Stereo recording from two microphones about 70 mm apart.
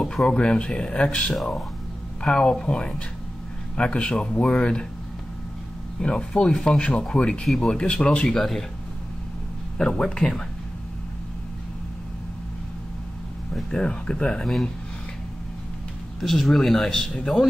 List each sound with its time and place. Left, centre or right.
0.0 s speech: centre
1.3 s speech: centre
5.9 s speech: centre
7.7 s speech: centre
8.3 s speech: centre
9.8 s speech: centre
13.6 s speech: centre
16.2 s speech: centre